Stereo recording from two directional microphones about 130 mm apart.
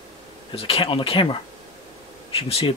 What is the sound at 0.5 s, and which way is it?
Speech, 45° left (ahead or behind).